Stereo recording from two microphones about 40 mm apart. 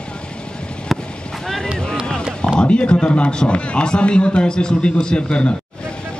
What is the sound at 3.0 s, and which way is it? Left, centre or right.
A man's voice, left.